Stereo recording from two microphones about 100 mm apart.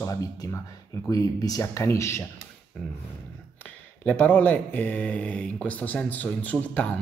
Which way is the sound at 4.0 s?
15° left (ahead or behind).